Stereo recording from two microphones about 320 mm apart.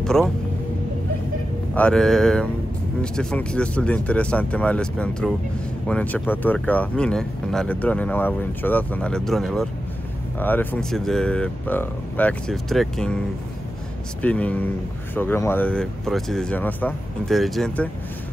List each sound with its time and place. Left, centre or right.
0.0 s speech: centre
1.8 s speech: centre
14.2 s speech: centre